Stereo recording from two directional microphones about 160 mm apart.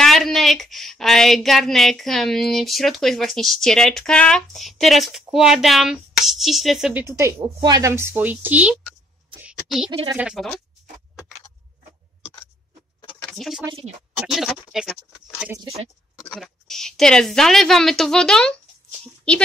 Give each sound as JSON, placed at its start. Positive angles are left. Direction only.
{"t": 0.0, "sound": "speech", "side_deg": 0}
{"t": 6.9, "sound": "a woman's voice", "side_deg": -15}
{"t": 9.4, "sound": "a sound", "side_deg": -5}
{"t": 9.8, "sound": "speech", "side_deg": -30}
{"t": 10.1, "sound": "speech", "side_deg": -5}
{"t": 13.2, "sound": "speech", "side_deg": 5}
{"t": 16.3, "sound": "speech", "side_deg": 5}